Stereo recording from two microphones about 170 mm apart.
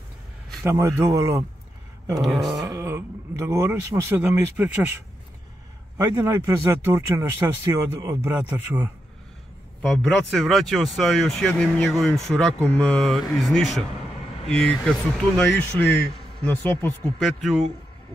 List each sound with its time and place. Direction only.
0.7 s speech: 20° right (ahead or behind)
2.2 s speech: centre (ahead or behind)
2.8 s speech: 15° right (ahead or behind)
9.8 s speech: 5° left (ahead or behind)